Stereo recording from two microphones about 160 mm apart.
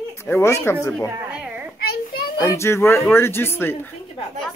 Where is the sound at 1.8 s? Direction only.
70° left (ahead or behind).